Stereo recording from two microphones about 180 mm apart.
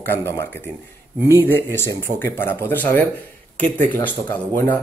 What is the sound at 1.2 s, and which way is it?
Speech, 15° right (ahead or behind).